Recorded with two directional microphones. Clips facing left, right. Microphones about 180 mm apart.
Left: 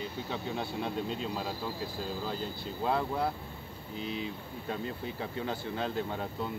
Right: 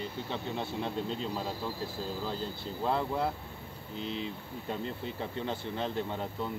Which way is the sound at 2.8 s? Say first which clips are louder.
Even; centre (ahead or behind).